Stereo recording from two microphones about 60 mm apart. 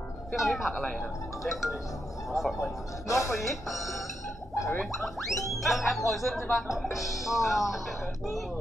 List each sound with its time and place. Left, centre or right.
0.3 s speech: centre
3.1 s speech: left
3.4 s speech: centre